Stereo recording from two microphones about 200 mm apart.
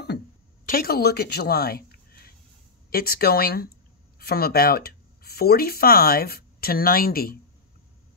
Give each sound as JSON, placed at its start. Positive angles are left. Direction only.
{"t": 0.7, "sound": "speech", "side_deg": 50}